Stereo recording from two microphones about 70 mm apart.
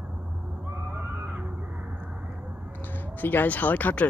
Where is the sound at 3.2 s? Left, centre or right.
Left.